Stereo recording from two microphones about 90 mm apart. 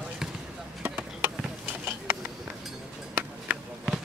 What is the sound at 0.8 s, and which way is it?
Chop, 20° right (ahead or behind).